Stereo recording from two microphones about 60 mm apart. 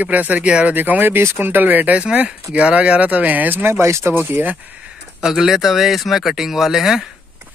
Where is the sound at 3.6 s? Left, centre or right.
Right.